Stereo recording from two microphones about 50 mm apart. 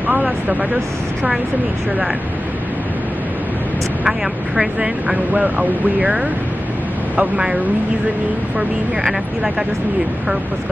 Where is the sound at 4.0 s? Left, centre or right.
Centre.